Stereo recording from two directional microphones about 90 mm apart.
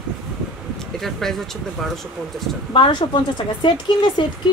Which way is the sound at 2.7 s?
65° left (ahead or behind).